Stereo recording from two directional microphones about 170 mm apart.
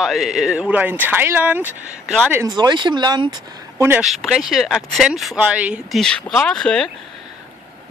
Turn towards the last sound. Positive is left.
turn(degrees=5)  # may be behind; listen again after turning